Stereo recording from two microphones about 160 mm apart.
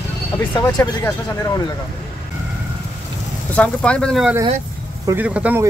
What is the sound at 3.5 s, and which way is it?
Speech, 5° left (ahead or behind).